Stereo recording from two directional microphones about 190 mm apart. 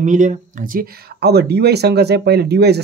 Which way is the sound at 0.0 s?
40° right (ahead or behind).